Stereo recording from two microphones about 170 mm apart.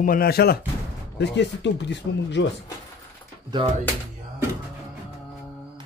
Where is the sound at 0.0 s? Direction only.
60° left (ahead or behind).